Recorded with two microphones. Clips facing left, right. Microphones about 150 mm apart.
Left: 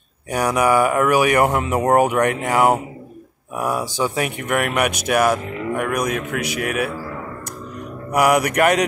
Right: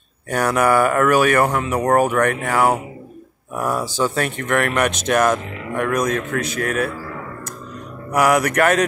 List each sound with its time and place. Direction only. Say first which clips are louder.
0.3 s speech: even; 15° left (ahead or behind)
8.1 s speech: even; 15° left (ahead or behind)